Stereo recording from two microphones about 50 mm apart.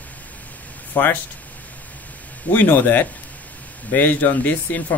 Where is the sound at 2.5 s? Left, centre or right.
Left.